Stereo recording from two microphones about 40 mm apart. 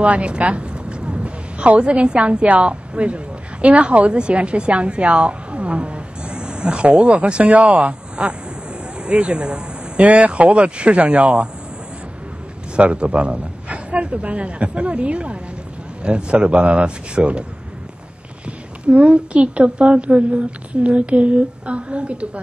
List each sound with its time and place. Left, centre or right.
0.0 s a man's voice: right
10.0 s speech: right
12.7 s a man's voice: right
18.9 s speech: right